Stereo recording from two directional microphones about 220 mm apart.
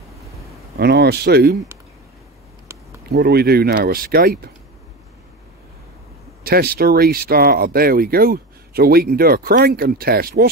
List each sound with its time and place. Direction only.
0.7 s speech: 50° right (ahead or behind)
3.1 s speech: 45° right (ahead or behind)
6.4 s speech: 45° right (ahead or behind)